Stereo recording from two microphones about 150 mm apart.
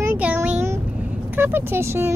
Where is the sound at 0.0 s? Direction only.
15° right (ahead or behind).